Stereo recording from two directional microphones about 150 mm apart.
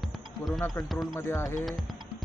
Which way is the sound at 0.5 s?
15° left (ahead or behind).